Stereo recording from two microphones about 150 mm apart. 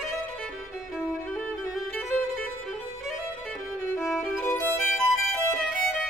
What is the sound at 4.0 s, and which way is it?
Violin, centre (ahead or behind).